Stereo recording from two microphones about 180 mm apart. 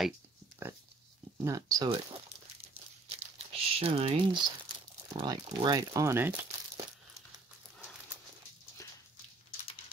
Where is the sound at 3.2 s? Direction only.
30° right (ahead or behind).